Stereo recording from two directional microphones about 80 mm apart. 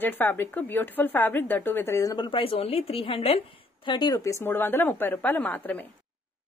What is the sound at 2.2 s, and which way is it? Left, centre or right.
Speech, left.